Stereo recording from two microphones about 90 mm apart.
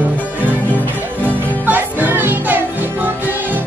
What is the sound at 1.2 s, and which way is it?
Music, 20° right (ahead or behind).